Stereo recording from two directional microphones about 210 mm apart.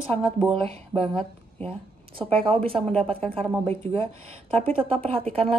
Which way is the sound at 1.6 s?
25° right (ahead or behind).